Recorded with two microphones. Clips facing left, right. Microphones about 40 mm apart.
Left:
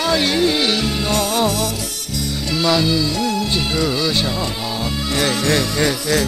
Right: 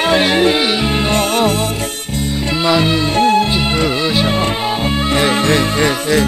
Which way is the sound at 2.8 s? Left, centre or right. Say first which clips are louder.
Right 5 dB; right.